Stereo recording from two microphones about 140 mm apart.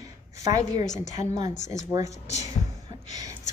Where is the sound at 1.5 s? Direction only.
60° left (ahead or behind).